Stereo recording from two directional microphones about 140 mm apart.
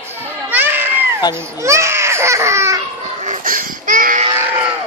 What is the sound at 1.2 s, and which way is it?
Speech, 30° left (ahead or behind).